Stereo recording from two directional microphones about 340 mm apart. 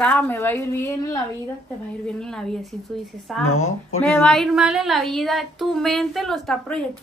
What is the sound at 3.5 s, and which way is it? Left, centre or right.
Speech, left.